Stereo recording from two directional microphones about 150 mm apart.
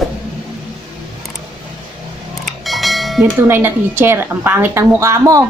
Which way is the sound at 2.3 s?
Centre (ahead or behind).